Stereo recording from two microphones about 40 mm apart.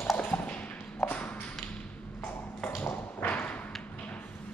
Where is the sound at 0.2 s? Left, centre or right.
Left.